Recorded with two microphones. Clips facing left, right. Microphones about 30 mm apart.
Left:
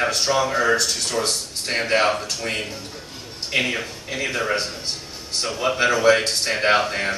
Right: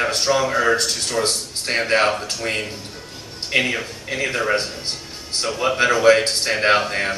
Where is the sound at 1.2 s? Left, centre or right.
Centre.